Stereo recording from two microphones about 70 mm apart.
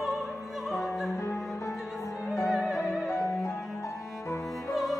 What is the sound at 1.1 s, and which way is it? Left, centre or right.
Cello, left.